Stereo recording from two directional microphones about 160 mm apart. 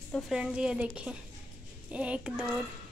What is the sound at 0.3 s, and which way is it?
A child's voice, 5° right (ahead or behind).